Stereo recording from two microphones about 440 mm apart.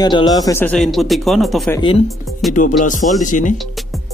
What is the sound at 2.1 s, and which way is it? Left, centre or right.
Speech, centre.